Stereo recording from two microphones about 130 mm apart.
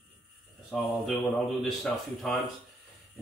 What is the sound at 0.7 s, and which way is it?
A man's voice, 5° right (ahead or behind).